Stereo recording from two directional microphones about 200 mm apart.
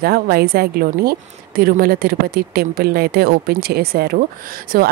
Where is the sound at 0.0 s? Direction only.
50° right (ahead or behind).